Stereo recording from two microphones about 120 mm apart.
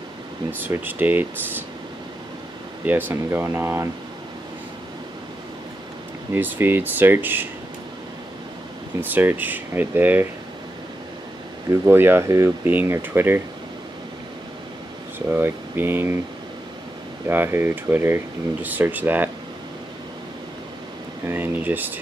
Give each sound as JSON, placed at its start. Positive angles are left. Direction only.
{"t": 0.5, "sound": "speech", "side_deg": -15}
{"t": 2.8, "sound": "speech", "side_deg": -15}
{"t": 6.3, "sound": "speech", "side_deg": -15}
{"t": 9.0, "sound": "speech", "side_deg": -15}
{"t": 11.7, "sound": "speech", "side_deg": -20}
{"t": 15.1, "sound": "speech", "side_deg": -15}
{"t": 17.3, "sound": "speech", "side_deg": -20}
{"t": 21.3, "sound": "speech", "side_deg": -15}